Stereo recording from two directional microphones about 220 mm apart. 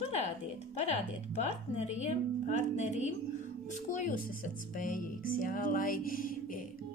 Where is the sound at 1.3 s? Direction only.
30° left (ahead or behind).